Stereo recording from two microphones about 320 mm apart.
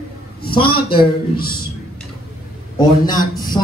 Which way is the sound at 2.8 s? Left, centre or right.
Centre.